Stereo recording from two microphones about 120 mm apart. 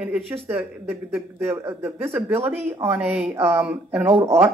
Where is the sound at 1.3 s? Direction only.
20° right (ahead or behind).